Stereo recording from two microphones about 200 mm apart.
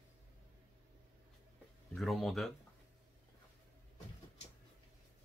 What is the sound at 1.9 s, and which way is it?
Speech, centre (ahead or behind).